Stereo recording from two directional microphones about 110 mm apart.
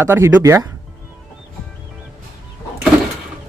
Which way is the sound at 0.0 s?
25° right (ahead or behind).